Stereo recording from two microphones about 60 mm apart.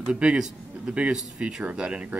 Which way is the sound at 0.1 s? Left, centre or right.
Centre.